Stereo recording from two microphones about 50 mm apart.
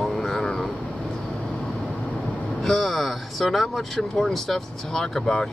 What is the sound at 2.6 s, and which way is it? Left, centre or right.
Speech, centre.